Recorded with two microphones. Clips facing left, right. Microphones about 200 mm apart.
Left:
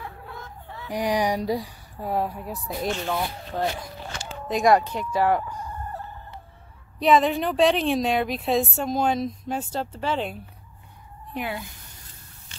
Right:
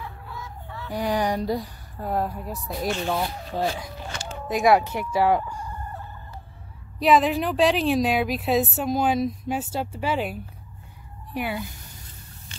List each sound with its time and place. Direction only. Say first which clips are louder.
0.7 s a woman's voice: left 1 dB; 15° left (ahead or behind); by 5.6 s 10° right (ahead or behind)
7.0 s a woman's voice: even; centre (ahead or behind)